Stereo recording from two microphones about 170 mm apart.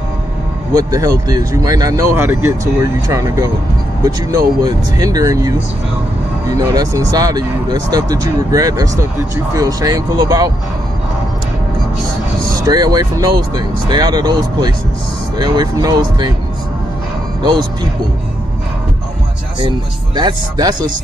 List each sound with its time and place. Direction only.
0.7 s speech: 20° right (ahead or behind)
12.6 s speech: 20° right (ahead or behind)
17.4 s speech: 25° right (ahead or behind)
20.2 s speech: 25° right (ahead or behind)